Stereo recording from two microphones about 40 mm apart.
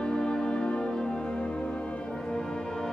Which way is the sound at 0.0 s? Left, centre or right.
Centre.